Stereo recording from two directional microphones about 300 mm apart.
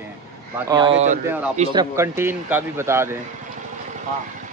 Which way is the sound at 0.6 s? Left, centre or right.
Centre.